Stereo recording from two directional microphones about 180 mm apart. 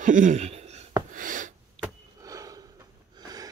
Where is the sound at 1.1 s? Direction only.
50° right (ahead or behind).